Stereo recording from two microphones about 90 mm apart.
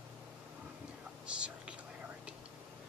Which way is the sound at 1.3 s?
10° right (ahead or behind).